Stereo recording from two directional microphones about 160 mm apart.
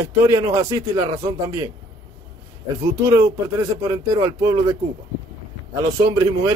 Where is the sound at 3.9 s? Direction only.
20° right (ahead or behind).